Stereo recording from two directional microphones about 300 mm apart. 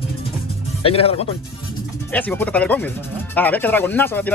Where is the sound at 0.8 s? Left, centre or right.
Centre.